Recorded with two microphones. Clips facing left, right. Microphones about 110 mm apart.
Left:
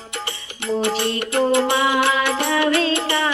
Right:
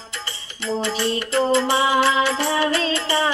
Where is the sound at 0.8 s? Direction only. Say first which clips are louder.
Left 2 dB; 60° left (ahead or behind).